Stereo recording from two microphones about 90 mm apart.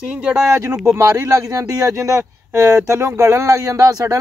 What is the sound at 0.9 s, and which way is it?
Speech, 35° right (ahead or behind).